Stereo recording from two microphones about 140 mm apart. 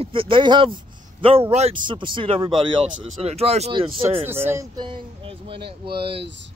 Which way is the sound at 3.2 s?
45° right (ahead or behind).